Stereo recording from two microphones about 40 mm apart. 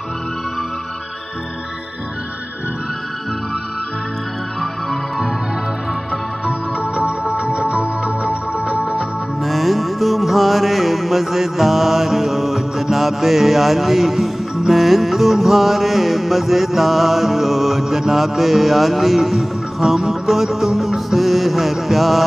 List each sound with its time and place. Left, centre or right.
6.8 s music: right
9.4 s music: centre